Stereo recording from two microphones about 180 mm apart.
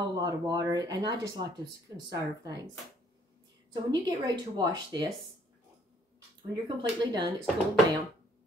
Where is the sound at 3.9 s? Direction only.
25° right (ahead or behind).